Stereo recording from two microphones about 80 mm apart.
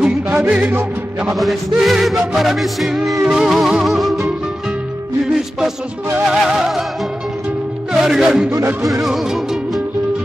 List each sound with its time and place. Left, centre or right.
0.5 s music: centre
1.3 s music: centre
6.2 s music: centre
7.9 s speech: centre
9.0 s music: centre